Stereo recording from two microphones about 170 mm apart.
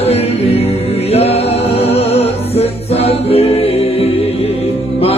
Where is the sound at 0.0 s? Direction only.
35° left (ahead or behind).